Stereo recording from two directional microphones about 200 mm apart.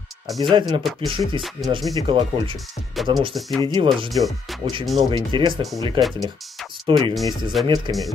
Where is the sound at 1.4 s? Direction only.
Centre (ahead or behind).